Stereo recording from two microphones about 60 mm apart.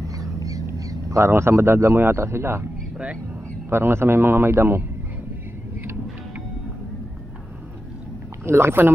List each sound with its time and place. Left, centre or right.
0.2 s a sound: right
1.1 s speech: right
3.7 s a man's voice: right
8.5 s speech: right